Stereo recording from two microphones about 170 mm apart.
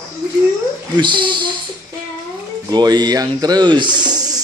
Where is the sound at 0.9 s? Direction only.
30° right (ahead or behind).